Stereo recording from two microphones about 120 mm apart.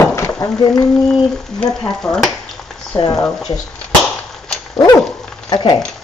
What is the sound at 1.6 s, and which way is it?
Frying, 5° left (ahead or behind).